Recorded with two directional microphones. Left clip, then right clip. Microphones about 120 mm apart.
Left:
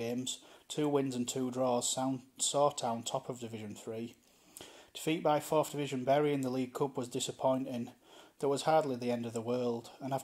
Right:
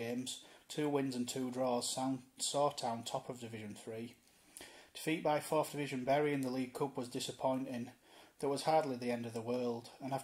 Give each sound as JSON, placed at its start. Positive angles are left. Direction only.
{"t": 0.0, "sound": "speech", "side_deg": 40}